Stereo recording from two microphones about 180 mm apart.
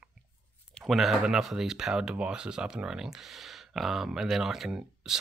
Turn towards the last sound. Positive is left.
turn(degrees=-5)  # may be behind; listen again after turning